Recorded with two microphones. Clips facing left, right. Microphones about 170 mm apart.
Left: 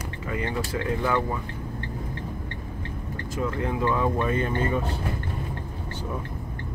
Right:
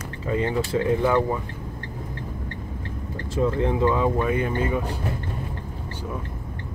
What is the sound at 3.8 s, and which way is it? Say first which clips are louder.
Speech: right 1 dB; 15° right (ahead or behind).